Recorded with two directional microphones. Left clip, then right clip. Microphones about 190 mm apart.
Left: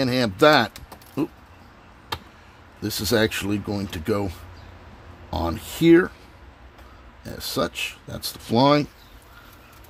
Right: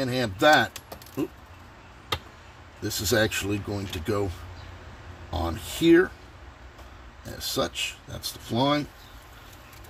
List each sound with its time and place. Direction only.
0.0 s speech: 50° left (ahead or behind)
2.8 s speech: 40° left (ahead or behind)
5.3 s speech: 40° left (ahead or behind)
7.3 s speech: 40° left (ahead or behind)